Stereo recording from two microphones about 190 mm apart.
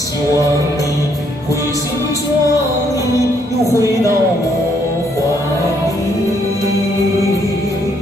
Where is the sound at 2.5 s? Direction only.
20° left (ahead or behind).